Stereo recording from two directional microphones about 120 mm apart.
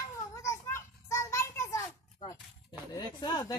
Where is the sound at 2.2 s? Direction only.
40° left (ahead or behind).